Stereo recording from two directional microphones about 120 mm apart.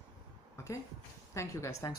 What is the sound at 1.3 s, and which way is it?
Speech, 25° left (ahead or behind).